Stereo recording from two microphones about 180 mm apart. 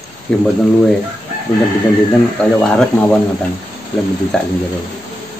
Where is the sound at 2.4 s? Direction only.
5° left (ahead or behind).